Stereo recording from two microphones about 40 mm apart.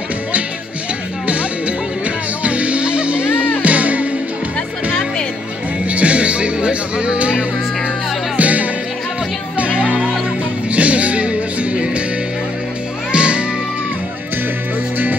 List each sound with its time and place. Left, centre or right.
1.2 s music: right
5.9 s music: right
8.4 s music: right
13.1 s music: right